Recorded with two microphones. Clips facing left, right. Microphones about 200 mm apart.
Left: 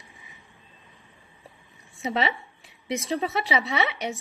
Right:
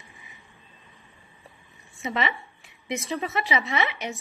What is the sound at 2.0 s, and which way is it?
A woman's voice, 35° left (ahead or behind).